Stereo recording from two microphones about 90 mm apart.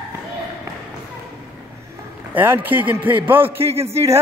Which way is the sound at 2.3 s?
25° right (ahead or behind).